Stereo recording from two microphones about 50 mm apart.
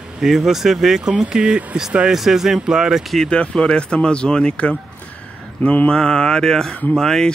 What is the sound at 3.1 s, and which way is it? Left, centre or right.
Speech, centre.